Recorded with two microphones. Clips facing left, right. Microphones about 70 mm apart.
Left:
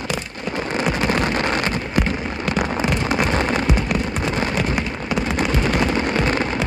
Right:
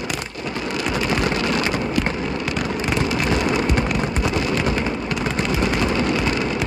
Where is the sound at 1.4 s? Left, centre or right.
Left.